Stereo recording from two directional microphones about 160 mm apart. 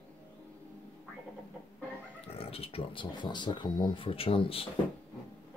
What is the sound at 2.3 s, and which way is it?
Speech, 35° left (ahead or behind).